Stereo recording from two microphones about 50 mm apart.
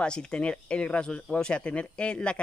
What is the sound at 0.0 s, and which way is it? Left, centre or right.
Speech, centre.